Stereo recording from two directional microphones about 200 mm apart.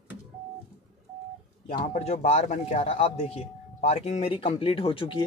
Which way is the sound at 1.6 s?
35° left (ahead or behind).